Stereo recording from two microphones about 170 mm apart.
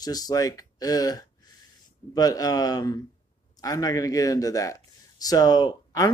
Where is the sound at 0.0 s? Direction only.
20° left (ahead or behind).